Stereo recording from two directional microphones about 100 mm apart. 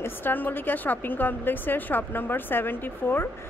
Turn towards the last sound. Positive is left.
turn(degrees=20)  # may be behind; listen again after turning